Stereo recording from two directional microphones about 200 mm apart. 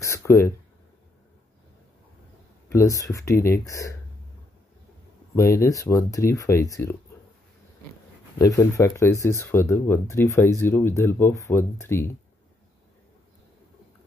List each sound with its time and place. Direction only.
0.0 s a sound: 15° left (ahead or behind)
2.7 s speech: 15° left (ahead or behind)
5.3 s speech: 15° left (ahead or behind)
8.4 s speech: 15° left (ahead or behind)